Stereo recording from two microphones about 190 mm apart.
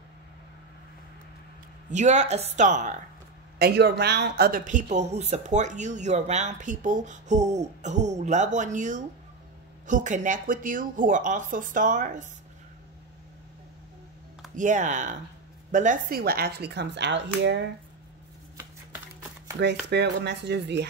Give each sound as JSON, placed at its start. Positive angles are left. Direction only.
{"t": 1.9, "sound": "speech", "side_deg": -40}
{"t": 3.5, "sound": "speech", "side_deg": -60}
{"t": 14.5, "sound": "speech", "side_deg": -40}
{"t": 19.9, "sound": "speech", "side_deg": -60}